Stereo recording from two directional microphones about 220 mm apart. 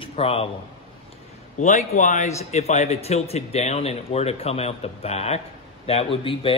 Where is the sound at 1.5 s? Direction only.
35° left (ahead or behind).